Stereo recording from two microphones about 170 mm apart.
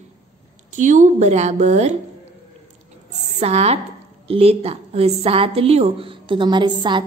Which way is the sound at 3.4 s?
40° right (ahead or behind).